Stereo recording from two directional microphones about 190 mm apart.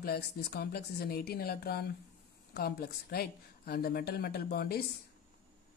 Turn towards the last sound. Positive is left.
turn(degrees=55)  # may be behind; listen again after turning